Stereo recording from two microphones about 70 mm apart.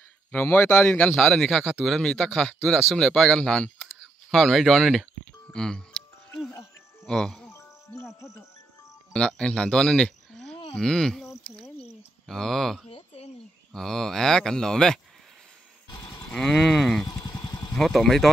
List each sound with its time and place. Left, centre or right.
0.3 s speech: left
0.7 s a man's voice: centre
4.3 s speech: centre
5.5 s music: centre
7.1 s a man's voice: centre
7.5 s cricket: left
9.1 s speech: centre
12.3 s a man's voice: centre
16.3 s a man's voice: centre
17.0 s vehicle: left
17.7 s speech: centre